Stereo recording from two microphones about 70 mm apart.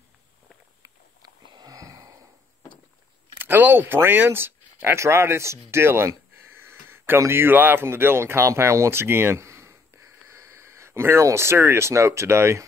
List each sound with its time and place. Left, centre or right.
1.4 s wheeze: right
3.3 s speech: right